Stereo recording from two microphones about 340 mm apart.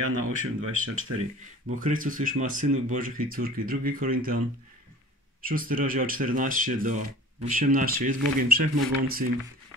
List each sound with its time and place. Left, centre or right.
0.2 s speech: right
1.8 s speech: right
5.4 s speech: right